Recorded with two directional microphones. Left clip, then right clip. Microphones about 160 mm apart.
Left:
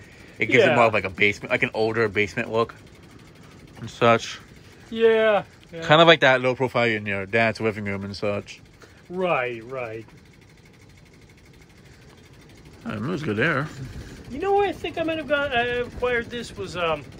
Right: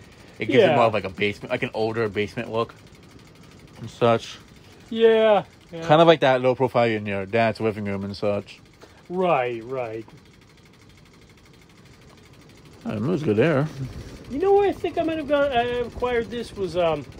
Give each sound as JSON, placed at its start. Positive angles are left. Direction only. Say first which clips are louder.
{"t": 0.4, "sound": "speech", "louder": "even", "side_deg": -25}
{"t": 3.8, "sound": "speech", "louder": "left 2 dB", "side_deg": -25}
{"t": 4.9, "sound": "speech", "louder": "right 2 dB", "side_deg": -90}
{"t": 5.8, "sound": "speech", "louder": "left 1 dB", "side_deg": -25}
{"t": 9.2, "sound": "speech", "louder": "right 2 dB", "side_deg": -75}
{"t": 12.8, "sound": "speech", "louder": "right 4 dB", "side_deg": -30}
{"t": 14.4, "sound": "speech", "louder": "right 3 dB", "side_deg": -70}